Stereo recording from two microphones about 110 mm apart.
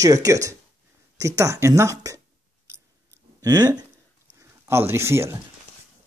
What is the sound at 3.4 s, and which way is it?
Speech, 35° right (ahead or behind).